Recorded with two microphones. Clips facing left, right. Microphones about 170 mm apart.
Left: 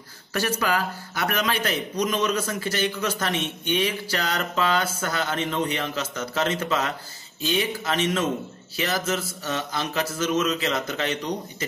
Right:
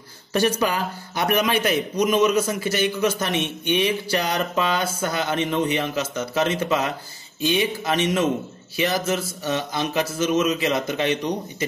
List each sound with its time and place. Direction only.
0.3 s a man's voice: 20° right (ahead or behind)